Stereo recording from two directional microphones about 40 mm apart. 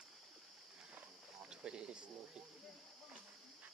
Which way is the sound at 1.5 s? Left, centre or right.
Right.